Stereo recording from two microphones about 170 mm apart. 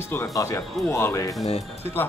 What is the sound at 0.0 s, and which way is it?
Speech, 15° left (ahead or behind).